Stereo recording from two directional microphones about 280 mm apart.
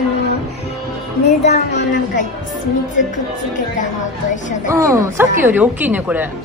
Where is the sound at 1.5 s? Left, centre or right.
Left.